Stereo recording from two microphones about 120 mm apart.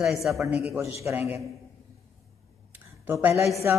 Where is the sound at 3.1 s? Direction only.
15° right (ahead or behind).